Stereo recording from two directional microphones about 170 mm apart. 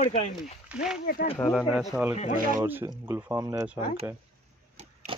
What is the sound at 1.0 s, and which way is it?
Speech, 60° left (ahead or behind).